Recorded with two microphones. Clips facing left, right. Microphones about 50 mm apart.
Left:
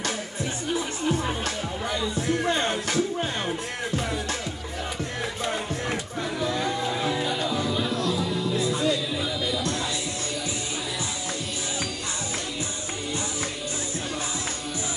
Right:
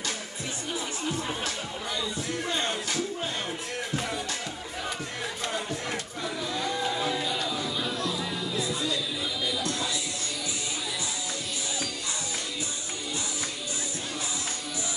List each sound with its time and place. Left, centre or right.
2.4 s music: left
6.4 s music: left
6.8 s music: left
7.2 s music: left
7.9 s music: left